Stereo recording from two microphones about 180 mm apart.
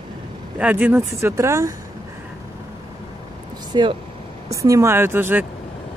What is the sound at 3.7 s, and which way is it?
Speech, 25° right (ahead or behind).